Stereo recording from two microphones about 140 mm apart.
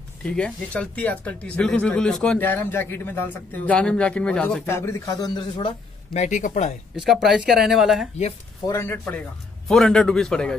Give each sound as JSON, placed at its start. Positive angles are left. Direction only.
{"t": 0.2, "sound": "speech", "side_deg": 10}
{"t": 4.6, "sound": "a man's voice", "side_deg": 20}
{"t": 6.1, "sound": "speech", "side_deg": 60}
{"t": 7.0, "sound": "speech", "side_deg": 0}
{"t": 8.6, "sound": "a man's voice", "side_deg": 20}
{"t": 9.7, "sound": "speech", "side_deg": 0}